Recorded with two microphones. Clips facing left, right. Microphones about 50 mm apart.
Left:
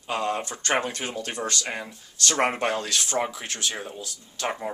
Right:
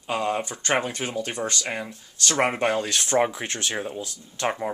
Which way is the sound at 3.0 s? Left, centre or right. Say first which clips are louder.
Right 5 dB; right.